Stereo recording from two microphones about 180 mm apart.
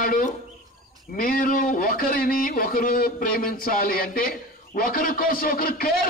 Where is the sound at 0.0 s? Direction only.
50° left (ahead or behind).